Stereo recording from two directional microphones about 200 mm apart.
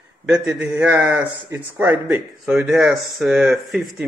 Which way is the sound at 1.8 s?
5° right (ahead or behind).